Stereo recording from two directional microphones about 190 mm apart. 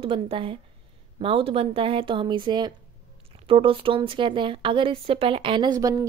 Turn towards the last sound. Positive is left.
turn(degrees=-20)  # may be behind; listen again after turning